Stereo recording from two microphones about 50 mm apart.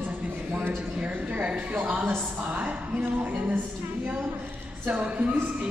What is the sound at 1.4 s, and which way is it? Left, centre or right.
A woman's voice, right.